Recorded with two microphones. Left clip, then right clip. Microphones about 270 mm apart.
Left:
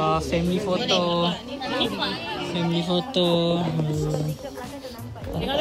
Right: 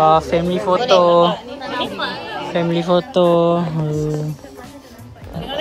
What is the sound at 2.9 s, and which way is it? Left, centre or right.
Speech, right.